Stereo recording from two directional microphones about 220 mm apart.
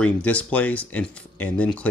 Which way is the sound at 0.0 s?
5° left (ahead or behind).